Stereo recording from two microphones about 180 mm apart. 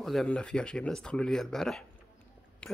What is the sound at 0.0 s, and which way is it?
Speech, centre (ahead or behind).